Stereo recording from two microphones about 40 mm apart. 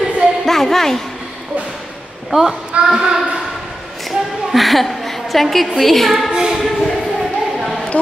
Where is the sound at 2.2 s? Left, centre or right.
Centre.